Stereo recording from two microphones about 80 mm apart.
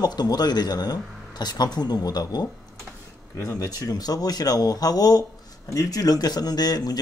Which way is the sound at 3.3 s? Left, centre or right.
Left.